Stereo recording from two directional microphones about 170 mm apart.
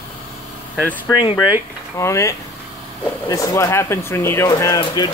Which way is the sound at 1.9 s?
15° left (ahead or behind).